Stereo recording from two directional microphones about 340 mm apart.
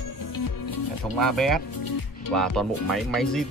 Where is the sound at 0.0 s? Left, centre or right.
Left.